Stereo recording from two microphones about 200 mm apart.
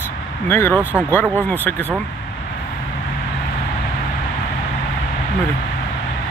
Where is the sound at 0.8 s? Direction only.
10° right (ahead or behind).